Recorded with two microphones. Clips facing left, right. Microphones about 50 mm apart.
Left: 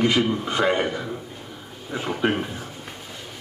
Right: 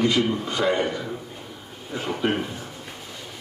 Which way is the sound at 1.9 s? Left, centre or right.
Centre.